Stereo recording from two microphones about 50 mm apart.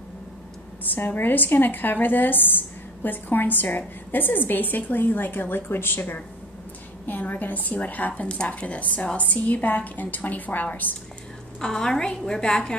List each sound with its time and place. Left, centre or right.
0.8 s speech: left
7.1 s speech: left
11.6 s a woman's voice: centre